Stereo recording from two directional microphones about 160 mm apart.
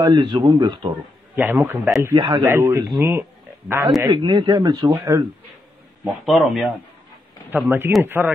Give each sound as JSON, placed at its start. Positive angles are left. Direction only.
{"t": 0.0, "sound": "speech", "side_deg": -30}
{"t": 1.3, "sound": "a man's voice", "side_deg": -15}
{"t": 4.1, "sound": "speech", "side_deg": -30}
{"t": 6.2, "sound": "speech", "side_deg": 0}
{"t": 7.5, "sound": "a man's voice", "side_deg": -10}